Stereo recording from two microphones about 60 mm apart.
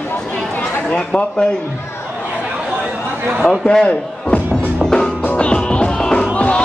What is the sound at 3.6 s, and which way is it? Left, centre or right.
Speech, centre.